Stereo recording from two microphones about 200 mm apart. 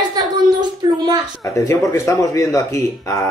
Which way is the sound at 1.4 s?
15° left (ahead or behind).